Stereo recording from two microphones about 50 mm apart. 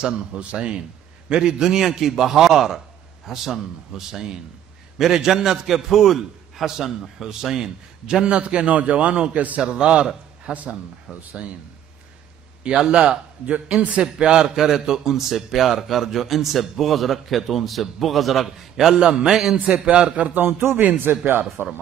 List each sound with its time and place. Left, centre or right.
0.0 s a man's voice: centre
12.6 s a man's voice: centre
20.3 s a man's voice: right